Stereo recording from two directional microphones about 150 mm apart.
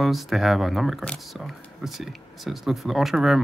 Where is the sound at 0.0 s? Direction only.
Centre (ahead or behind).